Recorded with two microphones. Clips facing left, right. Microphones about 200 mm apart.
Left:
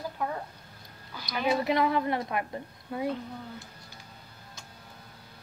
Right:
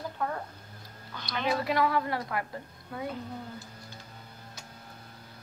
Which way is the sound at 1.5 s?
20° left (ahead or behind).